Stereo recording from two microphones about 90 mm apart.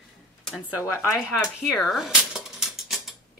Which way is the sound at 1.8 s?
Centre (ahead or behind).